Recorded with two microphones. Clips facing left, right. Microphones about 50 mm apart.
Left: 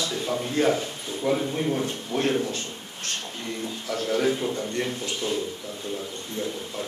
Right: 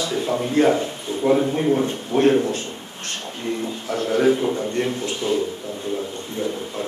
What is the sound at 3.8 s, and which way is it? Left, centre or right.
A man's voice, right.